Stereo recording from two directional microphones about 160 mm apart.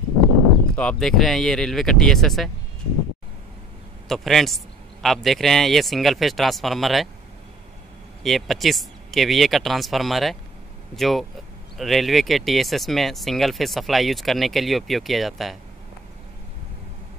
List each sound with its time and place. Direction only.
0.7 s speech: 5° left (ahead or behind)
4.1 s speech: centre (ahead or behind)
8.2 s speech: centre (ahead or behind)